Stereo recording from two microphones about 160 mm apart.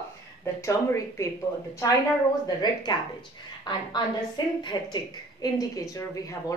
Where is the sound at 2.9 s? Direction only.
30° left (ahead or behind).